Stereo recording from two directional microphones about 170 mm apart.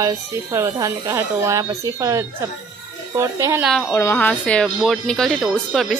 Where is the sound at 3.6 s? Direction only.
Centre (ahead or behind).